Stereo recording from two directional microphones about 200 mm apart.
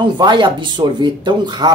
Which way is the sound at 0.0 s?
20° right (ahead or behind).